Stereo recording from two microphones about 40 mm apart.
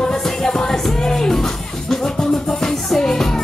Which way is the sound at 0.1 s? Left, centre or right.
Centre.